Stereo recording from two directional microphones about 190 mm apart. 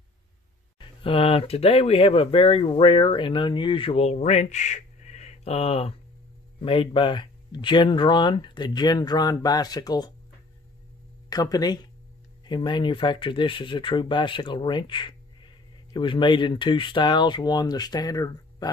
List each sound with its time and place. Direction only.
0.7 s speech: 30° left (ahead or behind)
11.2 s speech: 20° left (ahead or behind)